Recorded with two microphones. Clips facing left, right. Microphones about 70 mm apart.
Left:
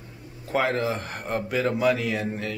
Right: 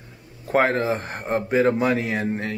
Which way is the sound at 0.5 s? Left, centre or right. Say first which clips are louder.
Right 4 dB; right.